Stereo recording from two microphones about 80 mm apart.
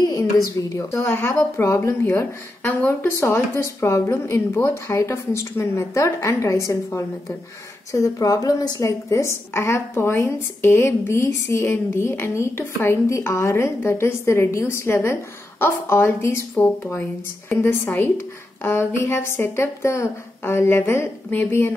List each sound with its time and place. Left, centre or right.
0.0 s a woman's voice: left